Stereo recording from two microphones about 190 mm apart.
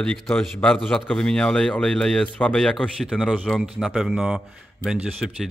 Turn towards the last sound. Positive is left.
turn(degrees=-5)  # may be behind; listen again after turning